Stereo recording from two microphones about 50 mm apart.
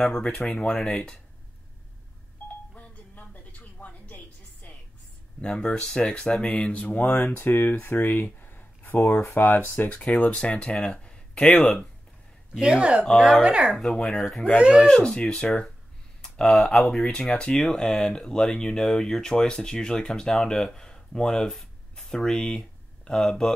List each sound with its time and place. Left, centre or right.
0.0 s speech: centre
0.5 s speech: centre
2.4 s a sound: left
4.6 s music: left
5.4 s speech: centre
7.3 s speech: left
9.9 s speech: left; by 11.8 s centre
12.5 s speech: centre
13.0 s speech: centre
13.4 s speech: right
13.9 s speech: centre
15.0 s speech: centre